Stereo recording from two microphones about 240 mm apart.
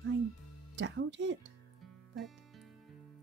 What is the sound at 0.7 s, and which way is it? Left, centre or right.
Speech, right.